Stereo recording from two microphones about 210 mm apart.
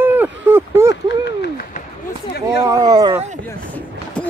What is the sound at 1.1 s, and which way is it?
Speech, 55° left (ahead or behind).